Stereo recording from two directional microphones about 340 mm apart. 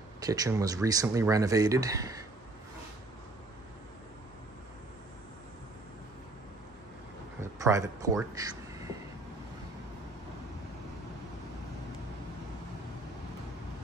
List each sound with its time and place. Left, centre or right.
0.2 s speech: centre
7.3 s speech: centre